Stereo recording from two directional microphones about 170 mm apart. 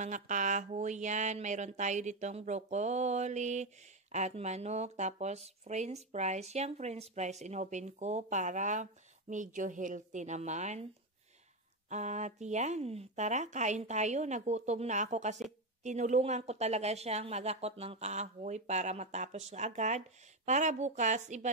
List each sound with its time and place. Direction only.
0.0 s speech: 45° right (ahead or behind)
11.9 s speech: 45° right (ahead or behind)